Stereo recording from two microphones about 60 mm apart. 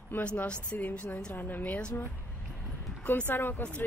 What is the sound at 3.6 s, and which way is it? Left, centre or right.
Speech, left.